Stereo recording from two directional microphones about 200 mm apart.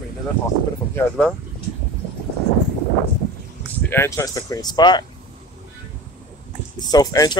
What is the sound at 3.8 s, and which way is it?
Speech, 10° left (ahead or behind).